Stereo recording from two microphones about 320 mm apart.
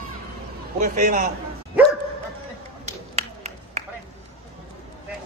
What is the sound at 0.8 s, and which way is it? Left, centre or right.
Speech, right.